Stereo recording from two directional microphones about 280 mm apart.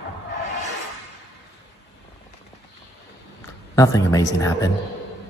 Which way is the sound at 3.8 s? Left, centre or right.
Centre.